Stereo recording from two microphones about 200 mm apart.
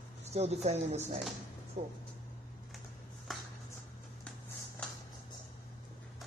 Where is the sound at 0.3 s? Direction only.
30° right (ahead or behind).